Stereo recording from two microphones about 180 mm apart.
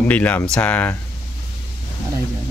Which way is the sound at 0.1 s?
10° left (ahead or behind).